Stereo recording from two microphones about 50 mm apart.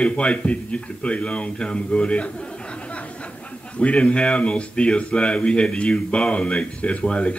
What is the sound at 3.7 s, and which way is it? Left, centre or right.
Speech, left.